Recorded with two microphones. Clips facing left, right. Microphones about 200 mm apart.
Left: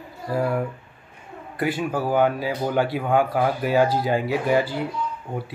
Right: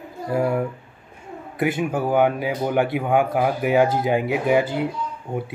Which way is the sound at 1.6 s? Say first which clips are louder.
Right 2 dB; 20° right (ahead or behind).